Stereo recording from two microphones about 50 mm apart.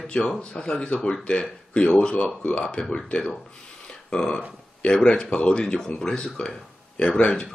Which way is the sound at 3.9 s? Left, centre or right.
Centre.